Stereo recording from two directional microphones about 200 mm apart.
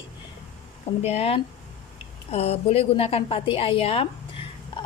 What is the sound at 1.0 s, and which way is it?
A woman's voice, 30° left (ahead or behind).